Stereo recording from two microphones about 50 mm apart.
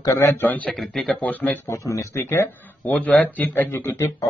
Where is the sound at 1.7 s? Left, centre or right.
Left.